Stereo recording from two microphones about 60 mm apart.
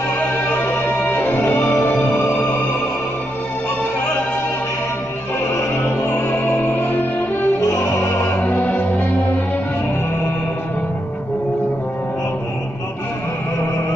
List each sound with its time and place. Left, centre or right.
0.1 s music: left
6.0 s music: left
7.7 s music: left
8.4 s music: left